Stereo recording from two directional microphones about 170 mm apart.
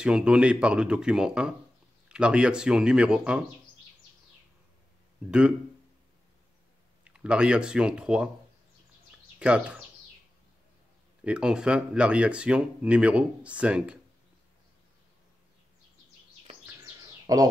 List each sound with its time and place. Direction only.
0.0 s speech: 5° right (ahead or behind)
7.1 s speech: 5° right (ahead or behind)
9.4 s speech: 5° right (ahead or behind)
11.2 s speech: 5° right (ahead or behind)
16.6 s chirp: 15° right (ahead or behind)